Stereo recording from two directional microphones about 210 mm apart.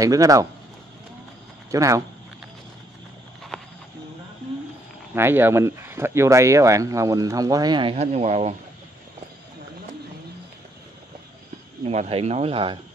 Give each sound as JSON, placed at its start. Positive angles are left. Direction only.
{"t": 0.0, "sound": "speech", "side_deg": -15}
{"t": 1.7, "sound": "speech", "side_deg": -15}
{"t": 3.5, "sound": "a sound", "side_deg": 5}
{"t": 5.1, "sound": "speech", "side_deg": -10}
{"t": 11.8, "sound": "speech", "side_deg": -30}